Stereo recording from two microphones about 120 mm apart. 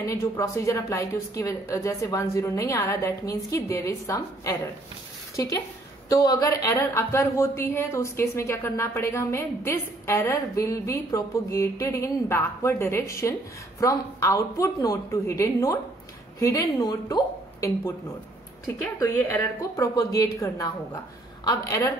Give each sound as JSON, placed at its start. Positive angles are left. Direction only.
{"t": 0.0, "sound": "a woman's voice", "side_deg": 25}
{"t": 18.9, "sound": "a woman's voice", "side_deg": 25}